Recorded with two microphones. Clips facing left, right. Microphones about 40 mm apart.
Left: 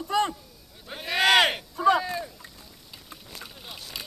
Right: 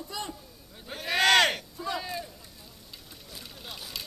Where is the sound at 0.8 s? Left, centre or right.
Centre.